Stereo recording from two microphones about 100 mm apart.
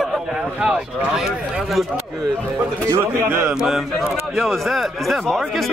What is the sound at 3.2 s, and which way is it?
Speech, 25° right (ahead or behind).